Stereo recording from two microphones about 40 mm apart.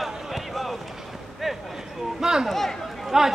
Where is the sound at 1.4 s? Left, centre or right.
Centre.